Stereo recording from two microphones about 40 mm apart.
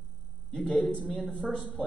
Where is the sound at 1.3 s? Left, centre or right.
Left.